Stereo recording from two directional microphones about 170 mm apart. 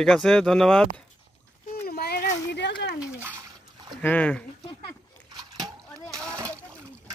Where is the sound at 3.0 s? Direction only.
10° right (ahead or behind).